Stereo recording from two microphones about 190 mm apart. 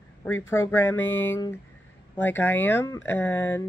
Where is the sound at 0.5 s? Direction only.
15° left (ahead or behind).